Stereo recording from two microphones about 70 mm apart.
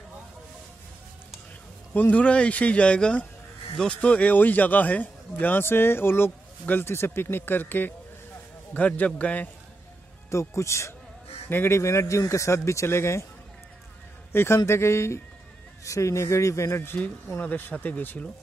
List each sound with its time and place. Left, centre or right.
2.0 s a man's voice: centre
10.3 s speech: left
11.4 s speech: left
14.3 s a man's voice: left
17.4 s a man's voice: left